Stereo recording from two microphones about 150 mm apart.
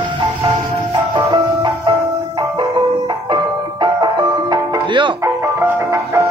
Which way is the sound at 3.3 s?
30° right (ahead or behind).